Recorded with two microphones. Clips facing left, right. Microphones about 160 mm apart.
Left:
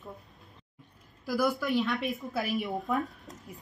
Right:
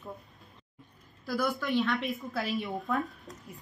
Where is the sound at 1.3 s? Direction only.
5° left (ahead or behind).